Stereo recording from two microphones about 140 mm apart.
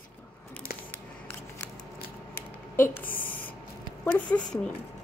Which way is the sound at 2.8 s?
80° left.